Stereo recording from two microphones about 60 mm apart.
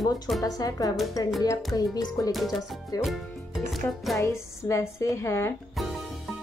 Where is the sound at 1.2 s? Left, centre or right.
Left.